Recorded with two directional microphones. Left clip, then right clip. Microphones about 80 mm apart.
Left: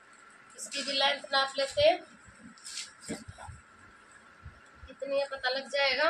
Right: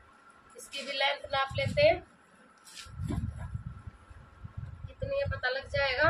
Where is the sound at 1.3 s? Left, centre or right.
Right.